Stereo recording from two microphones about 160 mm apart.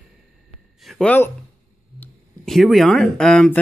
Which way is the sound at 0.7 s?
Centre (ahead or behind).